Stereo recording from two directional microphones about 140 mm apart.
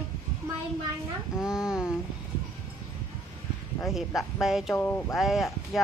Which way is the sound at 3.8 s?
Centre (ahead or behind).